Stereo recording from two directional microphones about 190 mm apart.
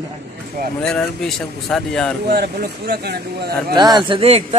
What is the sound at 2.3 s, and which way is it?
Speech, 55° right (ahead or behind).